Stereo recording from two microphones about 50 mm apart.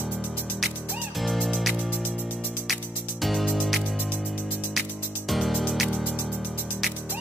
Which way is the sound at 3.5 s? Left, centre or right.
Centre.